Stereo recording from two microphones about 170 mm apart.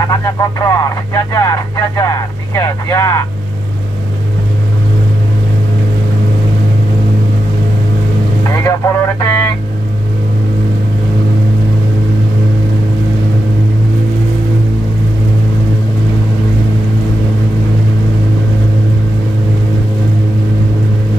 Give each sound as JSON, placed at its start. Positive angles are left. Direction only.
{"t": 0.1, "sound": "speech", "side_deg": 20}
{"t": 8.5, "sound": "speech", "side_deg": 20}